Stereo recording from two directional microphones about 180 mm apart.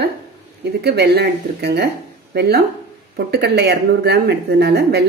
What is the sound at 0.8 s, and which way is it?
Speech, 65° right (ahead or behind).